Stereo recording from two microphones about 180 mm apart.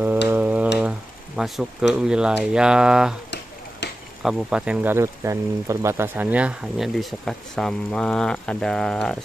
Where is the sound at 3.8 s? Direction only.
70° left (ahead or behind).